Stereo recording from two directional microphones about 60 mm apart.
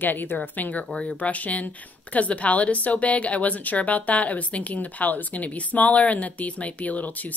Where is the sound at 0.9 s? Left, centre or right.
Centre.